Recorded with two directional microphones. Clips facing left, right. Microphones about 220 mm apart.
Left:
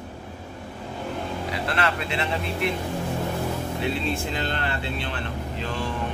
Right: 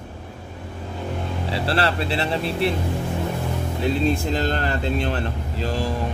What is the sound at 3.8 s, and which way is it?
Speech, 40° right (ahead or behind).